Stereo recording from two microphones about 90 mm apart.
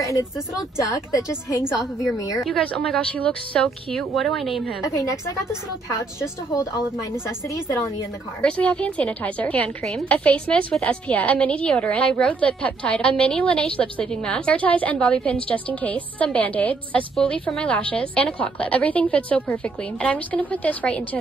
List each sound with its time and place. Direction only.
0.0 s a woman's voice: 35° left (ahead or behind)
2.4 s a woman's voice: 5° left (ahead or behind)
4.8 s a woman's voice: 35° left (ahead or behind)
6.5 s a woman's voice: 35° left (ahead or behind)
8.4 s a woman's voice: 15° left (ahead or behind)
17.1 s a woman's voice: 5° left (ahead or behind)